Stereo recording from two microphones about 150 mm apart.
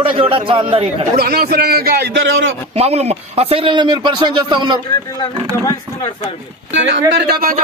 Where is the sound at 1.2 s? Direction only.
90° right.